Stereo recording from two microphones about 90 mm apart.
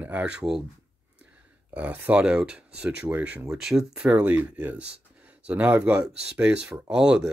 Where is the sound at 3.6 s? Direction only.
5° right (ahead or behind).